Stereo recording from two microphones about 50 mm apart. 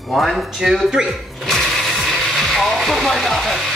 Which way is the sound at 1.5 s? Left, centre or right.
Centre.